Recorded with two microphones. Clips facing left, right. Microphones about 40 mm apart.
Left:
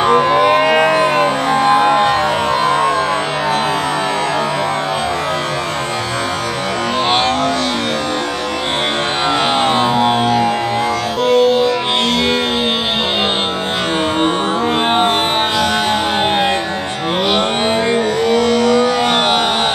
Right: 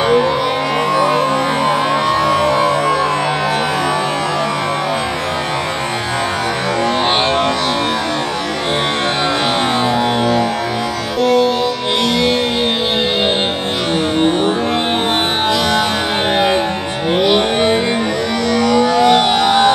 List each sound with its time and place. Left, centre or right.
0.1 s music: left
0.6 s music: left
9.8 s music: left
11.2 s music: left
17.2 s music: left